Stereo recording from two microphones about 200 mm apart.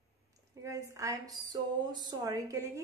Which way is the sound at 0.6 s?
15° right (ahead or behind).